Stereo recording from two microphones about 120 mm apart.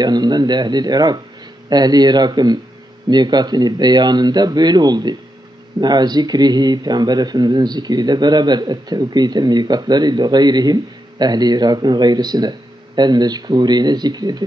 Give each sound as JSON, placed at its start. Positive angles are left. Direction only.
{"t": 0.0, "sound": "speech", "side_deg": -35}